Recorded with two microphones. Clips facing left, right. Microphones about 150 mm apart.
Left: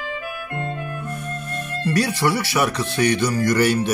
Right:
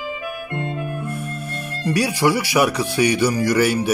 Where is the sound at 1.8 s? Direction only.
10° right (ahead or behind).